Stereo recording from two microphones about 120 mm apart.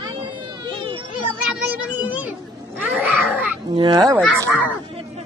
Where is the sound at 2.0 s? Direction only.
10° right (ahead or behind).